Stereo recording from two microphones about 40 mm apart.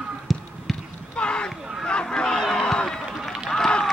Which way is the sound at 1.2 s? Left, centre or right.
Left.